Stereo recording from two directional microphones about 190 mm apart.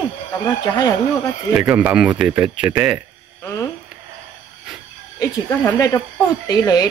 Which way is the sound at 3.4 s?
15° left (ahead or behind).